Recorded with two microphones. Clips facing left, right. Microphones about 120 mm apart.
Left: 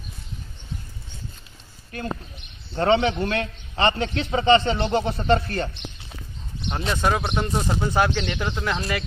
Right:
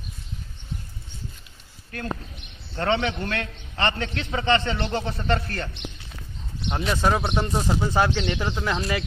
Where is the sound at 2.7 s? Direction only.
25° left (ahead or behind).